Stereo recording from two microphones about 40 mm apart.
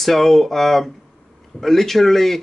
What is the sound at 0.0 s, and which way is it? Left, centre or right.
Speech, centre.